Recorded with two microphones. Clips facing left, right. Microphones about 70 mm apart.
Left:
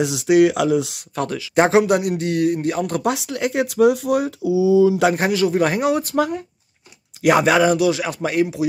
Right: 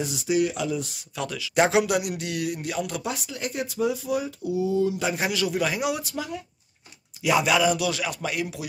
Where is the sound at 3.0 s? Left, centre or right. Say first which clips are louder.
Left 10 dB; left.